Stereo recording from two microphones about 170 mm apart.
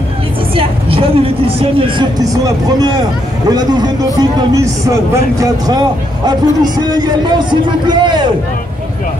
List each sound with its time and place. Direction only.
0.6 s a man's voice: 35° right (ahead or behind)